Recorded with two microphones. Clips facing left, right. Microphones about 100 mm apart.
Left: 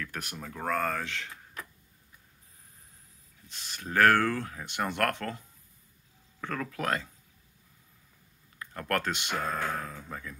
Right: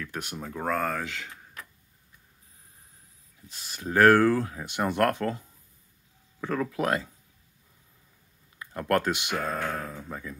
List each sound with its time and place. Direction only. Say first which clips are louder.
0.0 s speech: right 3 dB; 20° right (ahead or behind)
3.5 s speech: right 3 dB; 15° right (ahead or behind)
6.4 s speech: right 5 dB; 15° right (ahead or behind)
8.5 s speech: right 5 dB; 20° right (ahead or behind)